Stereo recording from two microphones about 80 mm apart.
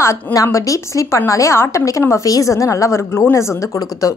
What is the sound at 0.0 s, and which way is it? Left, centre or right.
A woman's voice, left.